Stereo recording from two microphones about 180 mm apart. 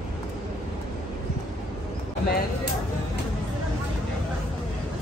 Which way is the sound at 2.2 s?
60° left (ahead or behind).